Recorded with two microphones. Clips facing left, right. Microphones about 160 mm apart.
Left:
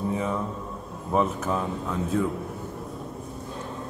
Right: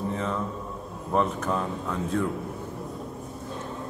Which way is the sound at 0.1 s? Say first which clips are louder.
Left 2 dB; 10° left (ahead or behind).